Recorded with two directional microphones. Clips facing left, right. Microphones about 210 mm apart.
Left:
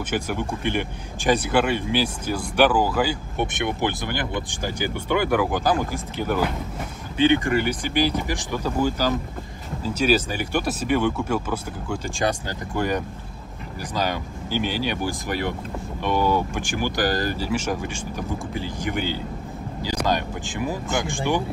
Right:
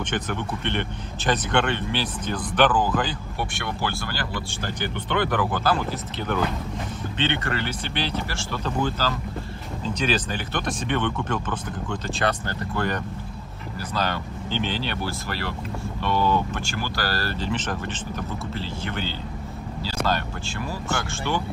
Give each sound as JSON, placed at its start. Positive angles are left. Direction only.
{"t": 0.1, "sound": "speech", "side_deg": 10}